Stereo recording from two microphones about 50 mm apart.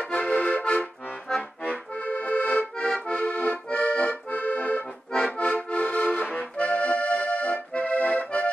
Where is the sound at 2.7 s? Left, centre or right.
Centre.